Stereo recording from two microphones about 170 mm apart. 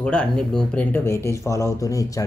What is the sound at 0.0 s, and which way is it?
Speech, 5° left (ahead or behind).